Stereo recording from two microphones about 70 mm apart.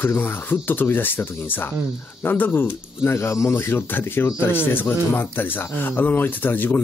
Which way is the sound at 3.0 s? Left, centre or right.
Left.